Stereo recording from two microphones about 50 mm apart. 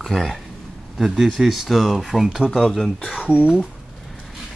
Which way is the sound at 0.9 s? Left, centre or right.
Centre.